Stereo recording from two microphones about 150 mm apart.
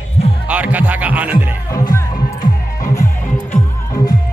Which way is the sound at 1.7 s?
25° left (ahead or behind).